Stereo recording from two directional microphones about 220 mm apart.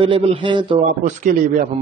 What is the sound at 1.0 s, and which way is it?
Speech, 35° right (ahead or behind).